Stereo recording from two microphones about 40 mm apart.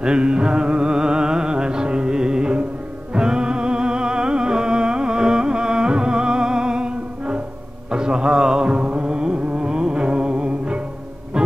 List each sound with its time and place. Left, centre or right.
0.0 s music: right